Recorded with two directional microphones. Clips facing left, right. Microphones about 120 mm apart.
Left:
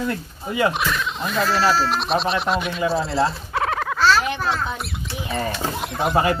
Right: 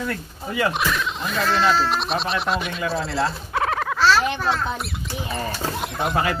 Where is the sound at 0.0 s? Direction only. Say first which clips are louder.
Left 2 dB; 20° left (ahead or behind).